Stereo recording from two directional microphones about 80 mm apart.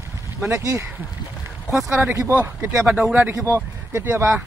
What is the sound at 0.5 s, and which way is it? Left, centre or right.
Speech, right.